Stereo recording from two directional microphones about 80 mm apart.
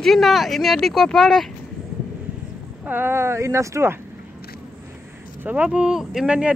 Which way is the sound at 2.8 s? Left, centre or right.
Right.